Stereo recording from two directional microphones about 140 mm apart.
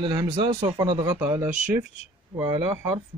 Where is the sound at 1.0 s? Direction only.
15° right (ahead or behind).